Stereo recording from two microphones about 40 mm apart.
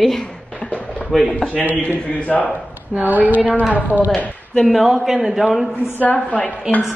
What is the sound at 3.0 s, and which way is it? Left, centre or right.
Speech, right.